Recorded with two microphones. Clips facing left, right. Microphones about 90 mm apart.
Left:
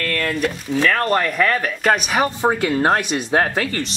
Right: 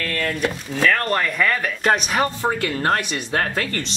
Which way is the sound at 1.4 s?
5° left (ahead or behind).